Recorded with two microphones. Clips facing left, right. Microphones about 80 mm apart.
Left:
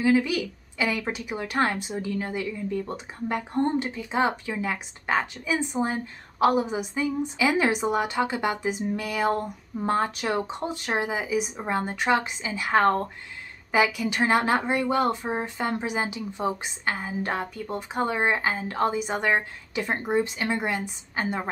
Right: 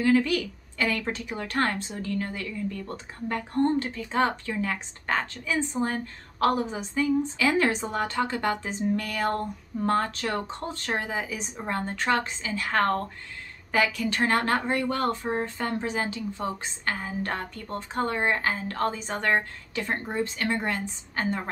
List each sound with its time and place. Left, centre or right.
0.0 s speech: centre